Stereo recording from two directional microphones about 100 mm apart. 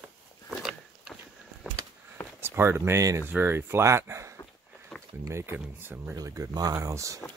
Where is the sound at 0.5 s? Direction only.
5° right (ahead or behind).